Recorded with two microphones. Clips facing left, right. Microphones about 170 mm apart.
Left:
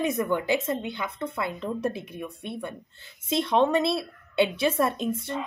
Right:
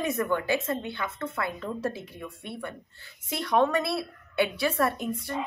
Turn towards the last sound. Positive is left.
turn(degrees=25)  # may be behind; listen again after turning